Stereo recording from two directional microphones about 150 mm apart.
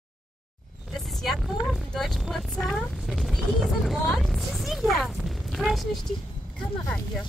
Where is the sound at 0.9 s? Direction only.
Centre (ahead or behind).